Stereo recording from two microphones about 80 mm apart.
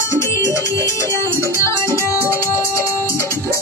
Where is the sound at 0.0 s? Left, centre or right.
Left.